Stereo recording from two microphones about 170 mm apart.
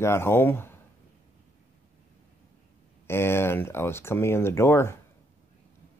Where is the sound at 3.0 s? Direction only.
15° left (ahead or behind).